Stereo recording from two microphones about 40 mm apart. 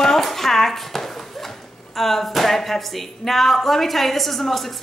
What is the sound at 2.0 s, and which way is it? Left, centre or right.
A woman's voice, centre.